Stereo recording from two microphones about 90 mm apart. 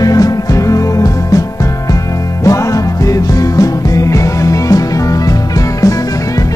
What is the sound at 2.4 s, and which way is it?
Music, 40° left (ahead or behind).